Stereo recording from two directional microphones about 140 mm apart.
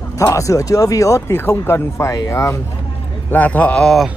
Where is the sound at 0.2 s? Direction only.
25° left (ahead or behind).